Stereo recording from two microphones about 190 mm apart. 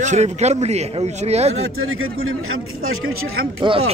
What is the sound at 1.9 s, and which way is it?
Speech, 90° right.